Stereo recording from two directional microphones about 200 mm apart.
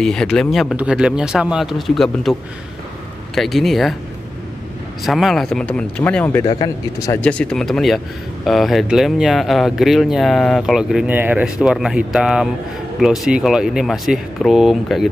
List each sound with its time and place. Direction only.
0.0 s speech: 5° left (ahead or behind)
3.3 s speech: centre (ahead or behind)
5.0 s speech: centre (ahead or behind)
6.4 s speech: 25° left (ahead or behind)
7.2 s speech: 5° left (ahead or behind)